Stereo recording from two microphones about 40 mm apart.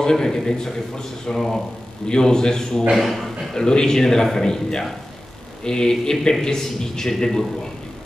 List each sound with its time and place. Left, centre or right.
0.0 s a man's voice: centre
3.0 s a man's voice: centre
3.5 s a man's voice: centre